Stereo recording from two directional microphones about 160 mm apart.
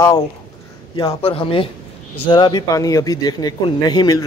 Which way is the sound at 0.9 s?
30° left (ahead or behind).